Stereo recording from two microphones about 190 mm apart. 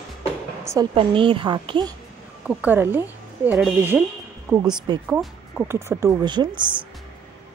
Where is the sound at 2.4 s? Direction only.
10° right (ahead or behind).